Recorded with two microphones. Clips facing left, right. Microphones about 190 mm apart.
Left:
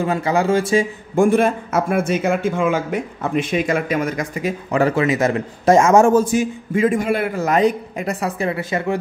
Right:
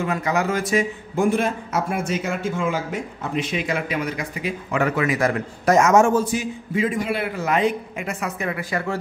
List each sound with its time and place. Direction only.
0.0 s speech: 30° left (ahead or behind)
1.1 s speech: 50° left (ahead or behind)
4.8 s a man's voice: 25° left (ahead or behind)